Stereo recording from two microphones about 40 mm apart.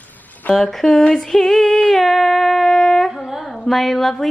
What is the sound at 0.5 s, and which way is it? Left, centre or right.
Speech, centre.